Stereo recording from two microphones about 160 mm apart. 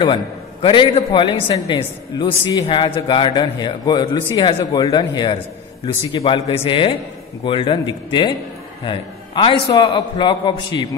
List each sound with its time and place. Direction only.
0.0 s a man's voice: 30° left (ahead or behind)